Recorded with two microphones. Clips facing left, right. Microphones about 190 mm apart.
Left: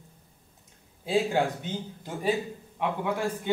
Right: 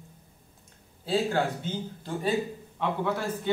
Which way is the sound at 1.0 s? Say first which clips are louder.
Left 1 dB; 15° left (ahead or behind).